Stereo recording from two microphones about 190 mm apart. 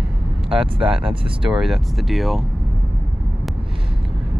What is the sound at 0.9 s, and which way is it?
Speech, 30° right (ahead or behind).